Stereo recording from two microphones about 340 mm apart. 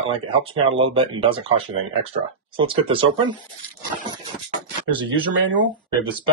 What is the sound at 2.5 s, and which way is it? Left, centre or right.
Speech, centre.